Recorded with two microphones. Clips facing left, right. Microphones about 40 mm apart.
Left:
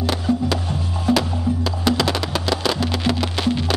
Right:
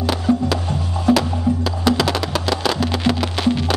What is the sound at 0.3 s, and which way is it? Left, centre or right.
Music, centre.